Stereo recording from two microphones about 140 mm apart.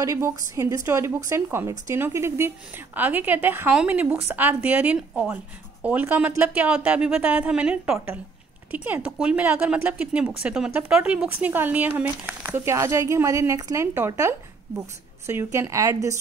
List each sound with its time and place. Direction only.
0.0 s a woman's voice: 25° right (ahead or behind)